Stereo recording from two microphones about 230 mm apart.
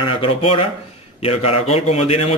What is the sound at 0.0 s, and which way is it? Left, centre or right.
Speech, left.